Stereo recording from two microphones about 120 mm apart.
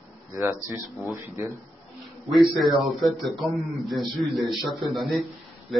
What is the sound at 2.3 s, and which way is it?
A man's voice, centre (ahead or behind).